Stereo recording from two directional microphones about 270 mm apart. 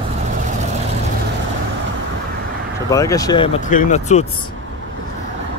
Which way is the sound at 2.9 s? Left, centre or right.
Centre.